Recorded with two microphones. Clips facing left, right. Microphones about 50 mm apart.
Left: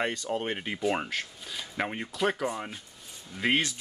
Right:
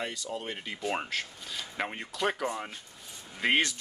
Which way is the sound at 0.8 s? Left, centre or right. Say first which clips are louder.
Left 2 dB; centre.